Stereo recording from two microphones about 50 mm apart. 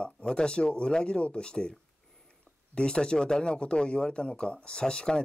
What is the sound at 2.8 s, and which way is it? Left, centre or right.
Speech, centre.